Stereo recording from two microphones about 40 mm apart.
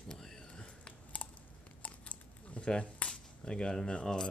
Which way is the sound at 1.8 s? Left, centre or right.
Left.